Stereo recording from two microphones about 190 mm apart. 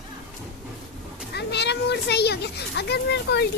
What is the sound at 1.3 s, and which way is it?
A child's voice, 60° left (ahead or behind).